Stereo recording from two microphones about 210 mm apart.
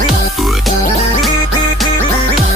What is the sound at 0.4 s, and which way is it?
Music, centre (ahead or behind).